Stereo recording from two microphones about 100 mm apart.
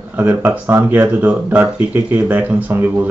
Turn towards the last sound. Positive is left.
turn(degrees=-20)  # may be behind; listen again after turning